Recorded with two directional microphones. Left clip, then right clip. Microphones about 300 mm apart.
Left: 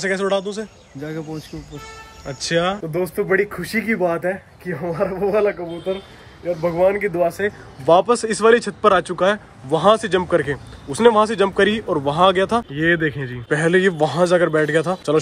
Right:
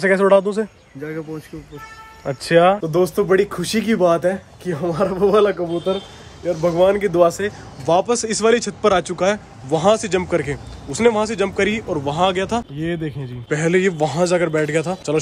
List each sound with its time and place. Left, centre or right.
0.0 s speech: centre
2.2 s speech: centre
6.4 s speech: centre
12.7 s speech: right
13.3 s speech: centre